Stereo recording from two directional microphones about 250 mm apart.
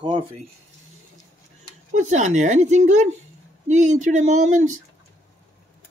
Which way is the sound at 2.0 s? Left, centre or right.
Right.